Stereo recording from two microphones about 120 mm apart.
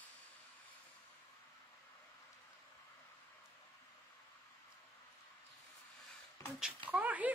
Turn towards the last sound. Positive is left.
turn(degrees=-15)  # may be behind; listen again after turning